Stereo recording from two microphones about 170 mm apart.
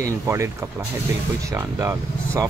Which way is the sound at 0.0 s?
15° right (ahead or behind).